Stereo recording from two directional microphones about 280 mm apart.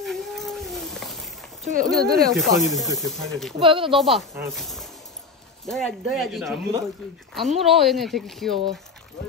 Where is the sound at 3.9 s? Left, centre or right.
Centre.